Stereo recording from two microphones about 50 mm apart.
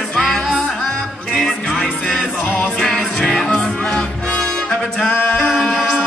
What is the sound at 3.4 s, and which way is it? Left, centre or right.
Music, centre.